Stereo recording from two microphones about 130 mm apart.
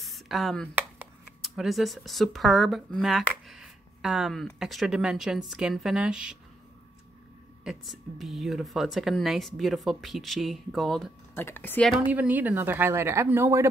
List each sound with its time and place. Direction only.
0.0 s a sound: centre (ahead or behind)
1.4 s speech: centre (ahead or behind)
7.6 s speech: centre (ahead or behind)
11.3 s speech: 15° left (ahead or behind)
12.0 s speech: 15° right (ahead or behind)